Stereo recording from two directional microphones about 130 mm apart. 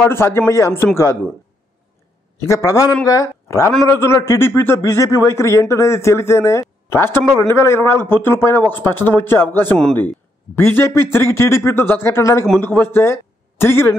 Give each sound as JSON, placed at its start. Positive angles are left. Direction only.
{"t": 0.0, "sound": "a man's voice", "side_deg": 20}
{"t": 2.3, "sound": "a man's voice", "side_deg": 20}